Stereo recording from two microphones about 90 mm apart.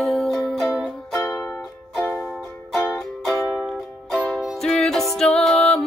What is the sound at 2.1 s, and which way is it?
Music, 5° left (ahead or behind).